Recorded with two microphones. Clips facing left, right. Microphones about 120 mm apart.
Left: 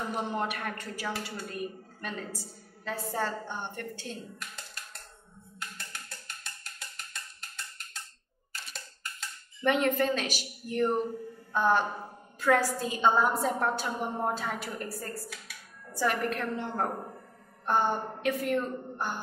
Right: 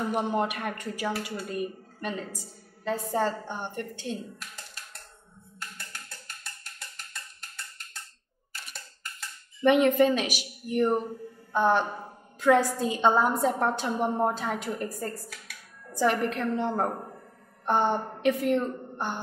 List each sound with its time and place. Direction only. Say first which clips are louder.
0.1 s a woman's voice: right 4 dB; 15° right (ahead or behind)
9.6 s a woman's voice: right 6 dB; 15° right (ahead or behind)